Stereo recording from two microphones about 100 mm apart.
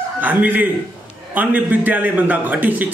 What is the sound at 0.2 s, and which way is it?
Speech, 15° right (ahead or behind).